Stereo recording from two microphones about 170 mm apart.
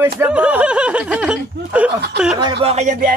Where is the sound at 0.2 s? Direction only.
10° right (ahead or behind).